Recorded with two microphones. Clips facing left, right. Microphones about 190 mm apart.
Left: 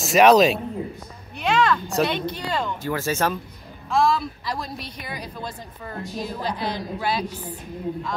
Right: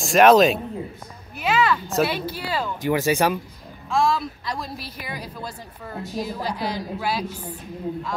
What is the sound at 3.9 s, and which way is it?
A woman's voice, centre (ahead or behind).